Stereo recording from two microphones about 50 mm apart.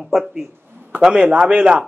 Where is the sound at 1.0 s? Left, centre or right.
Centre.